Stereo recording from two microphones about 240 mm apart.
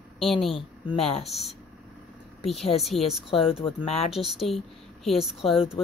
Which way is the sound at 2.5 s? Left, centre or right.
Centre.